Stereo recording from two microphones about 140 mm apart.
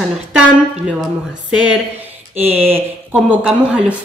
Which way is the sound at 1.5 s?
10° right (ahead or behind).